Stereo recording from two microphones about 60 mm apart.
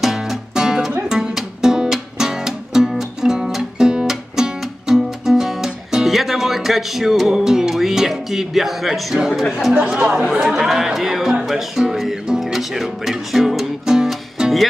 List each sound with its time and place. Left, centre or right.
0.0 s music: centre
9.9 s speech: centre